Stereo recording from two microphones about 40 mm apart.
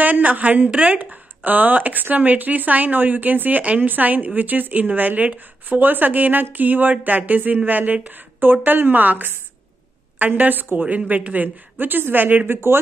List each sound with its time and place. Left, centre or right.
0.0 s a woman's voice: right
8.4 s a woman's voice: right
10.8 s speech: right
12.4 s speech: right